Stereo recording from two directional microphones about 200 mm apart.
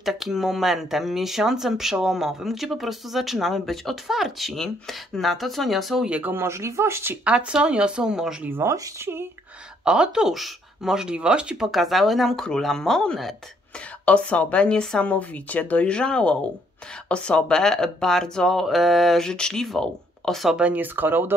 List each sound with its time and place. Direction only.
0.0 s speech: centre (ahead or behind)